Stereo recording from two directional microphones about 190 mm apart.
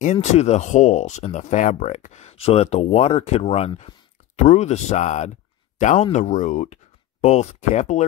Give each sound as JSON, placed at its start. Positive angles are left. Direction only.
{"t": 0.0, "sound": "speech", "side_deg": 35}